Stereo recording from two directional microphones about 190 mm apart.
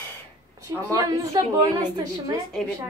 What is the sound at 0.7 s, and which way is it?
Speech, 15° right (ahead or behind).